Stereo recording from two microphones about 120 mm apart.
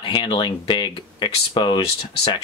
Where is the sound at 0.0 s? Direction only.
45° left (ahead or behind).